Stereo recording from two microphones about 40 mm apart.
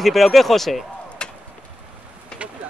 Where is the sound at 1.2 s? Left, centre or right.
Left.